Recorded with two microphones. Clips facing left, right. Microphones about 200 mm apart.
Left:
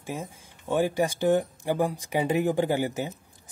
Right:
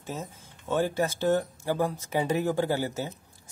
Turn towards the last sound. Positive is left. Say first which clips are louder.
# left 2 dB
turn(degrees=15)  # may be behind; listen again after turning